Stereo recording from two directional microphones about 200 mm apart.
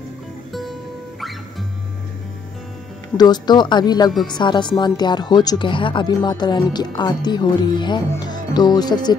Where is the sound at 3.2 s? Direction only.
20° left (ahead or behind).